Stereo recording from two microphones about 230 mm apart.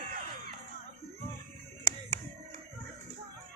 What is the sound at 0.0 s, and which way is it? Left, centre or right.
Music, right.